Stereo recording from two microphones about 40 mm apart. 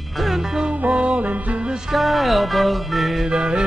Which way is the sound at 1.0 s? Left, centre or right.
Right.